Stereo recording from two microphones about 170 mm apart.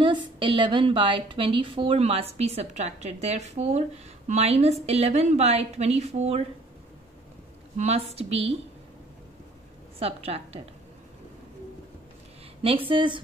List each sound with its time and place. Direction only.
0.0 s a woman's voice: 30° right (ahead or behind)
7.7 s a woman's voice: 40° right (ahead or behind)
9.9 s a woman's voice: 35° right (ahead or behind)
12.6 s a woman's voice: 30° right (ahead or behind)